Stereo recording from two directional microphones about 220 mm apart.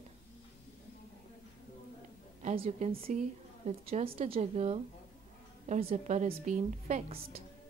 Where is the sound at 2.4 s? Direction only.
30° right (ahead or behind).